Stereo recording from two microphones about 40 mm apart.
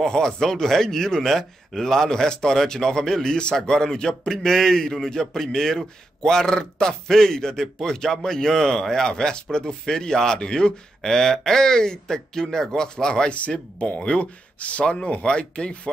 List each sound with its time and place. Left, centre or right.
0.0 s a man's voice: centre
13.5 s speech: left